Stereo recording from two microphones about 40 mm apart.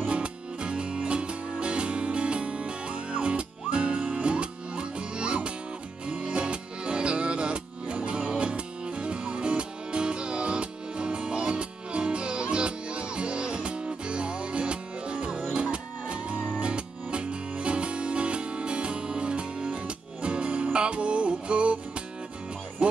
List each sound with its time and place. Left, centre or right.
0.0 s music: right
22.8 s music: right